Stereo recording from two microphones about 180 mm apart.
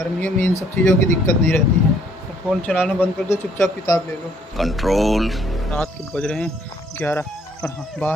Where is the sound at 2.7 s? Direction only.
5° left (ahead or behind).